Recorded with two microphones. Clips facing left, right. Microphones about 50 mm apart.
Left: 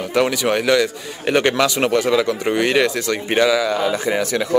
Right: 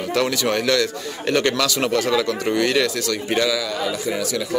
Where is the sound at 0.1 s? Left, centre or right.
Centre.